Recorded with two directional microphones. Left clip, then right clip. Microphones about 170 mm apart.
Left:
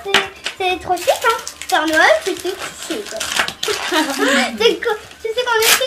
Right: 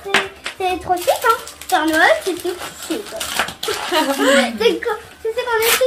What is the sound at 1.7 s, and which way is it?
A child's voice, centre (ahead or behind).